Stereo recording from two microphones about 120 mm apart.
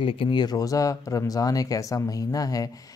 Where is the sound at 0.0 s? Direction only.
45° left (ahead or behind).